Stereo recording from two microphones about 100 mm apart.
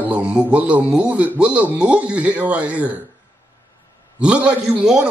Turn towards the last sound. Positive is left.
turn(degrees=-10)  # may be behind; listen again after turning